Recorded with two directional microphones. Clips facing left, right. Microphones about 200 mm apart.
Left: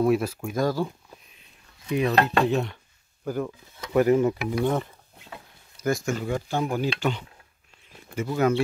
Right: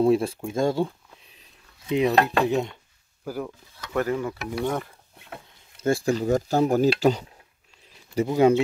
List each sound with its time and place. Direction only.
0.0 s speech: 30° right (ahead or behind)
1.9 s dishes: 20° right (ahead or behind)
3.3 s speech: 5° right (ahead or behind)
3.9 s mechanisms: 20° left (ahead or behind)
4.4 s speech: centre (ahead or behind)
5.8 s speech: 30° right (ahead or behind)
8.3 s speech: 25° right (ahead or behind)